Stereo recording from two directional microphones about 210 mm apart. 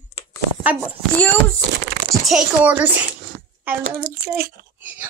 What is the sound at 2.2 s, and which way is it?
Speech, 5° right (ahead or behind).